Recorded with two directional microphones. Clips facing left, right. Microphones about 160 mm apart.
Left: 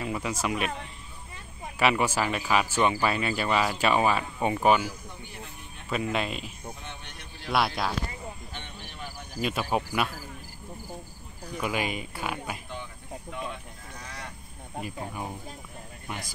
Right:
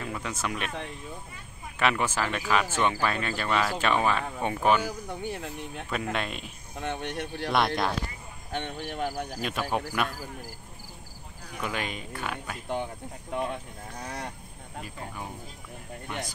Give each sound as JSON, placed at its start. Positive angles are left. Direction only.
{"t": 0.0, "sound": "speech", "side_deg": 10}
{"t": 1.8, "sound": "speech", "side_deg": 5}
{"t": 4.8, "sound": "speech", "side_deg": -70}
{"t": 6.1, "sound": "speech", "side_deg": 5}
{"t": 6.4, "sound": "speech", "side_deg": -65}
{"t": 7.5, "sound": "speech", "side_deg": 5}
{"t": 8.5, "sound": "speech", "side_deg": -60}
{"t": 9.4, "sound": "speech", "side_deg": 5}
{"t": 11.6, "sound": "speech", "side_deg": 10}
{"t": 12.6, "sound": "speech", "side_deg": -55}